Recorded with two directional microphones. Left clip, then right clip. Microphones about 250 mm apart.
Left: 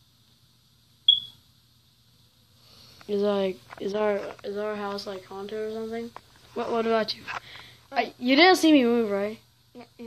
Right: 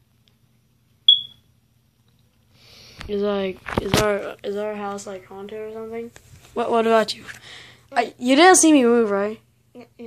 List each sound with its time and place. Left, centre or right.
3.1 s speech: centre
4.4 s speech: right
4.6 s a woman's voice: centre
9.7 s a sound: centre